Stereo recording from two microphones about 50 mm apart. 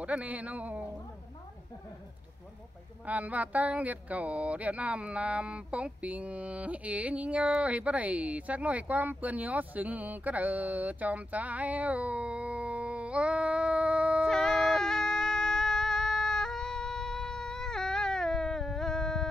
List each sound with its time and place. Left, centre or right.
0.0 s speech: right
3.1 s speech: right
14.3 s music: centre